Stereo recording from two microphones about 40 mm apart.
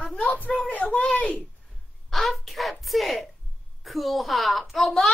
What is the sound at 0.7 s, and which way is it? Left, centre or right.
Speech, left.